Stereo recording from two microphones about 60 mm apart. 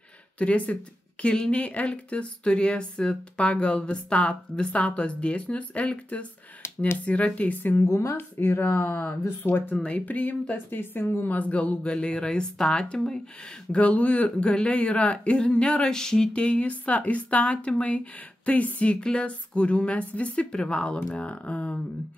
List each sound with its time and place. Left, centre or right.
0.4 s speech: left
7.8 s speech: left
8.2 s speech: left
9.8 s speech: left